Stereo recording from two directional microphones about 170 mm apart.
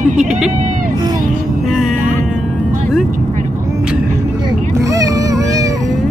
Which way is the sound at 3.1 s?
45° right (ahead or behind).